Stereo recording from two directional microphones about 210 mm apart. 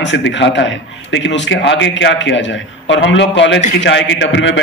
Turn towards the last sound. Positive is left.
turn(degrees=60)  # may be behind; listen again after turning